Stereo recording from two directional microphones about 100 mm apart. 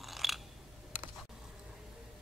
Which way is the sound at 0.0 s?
Centre (ahead or behind).